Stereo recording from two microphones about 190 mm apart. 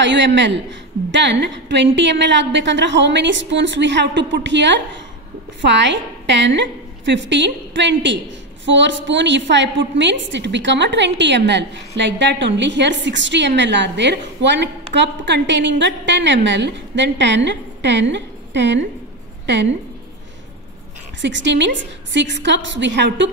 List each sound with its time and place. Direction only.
0.0 s a woman's voice: 65° right (ahead or behind)
21.2 s a woman's voice: 70° right (ahead or behind)